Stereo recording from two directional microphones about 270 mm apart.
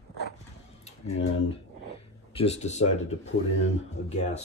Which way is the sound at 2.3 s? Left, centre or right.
Left.